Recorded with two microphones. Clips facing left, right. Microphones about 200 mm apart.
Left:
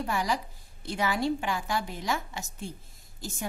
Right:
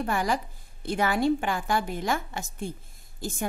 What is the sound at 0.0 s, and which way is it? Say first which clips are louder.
A woman's voice: right 3 dB; 55° right (ahead or behind).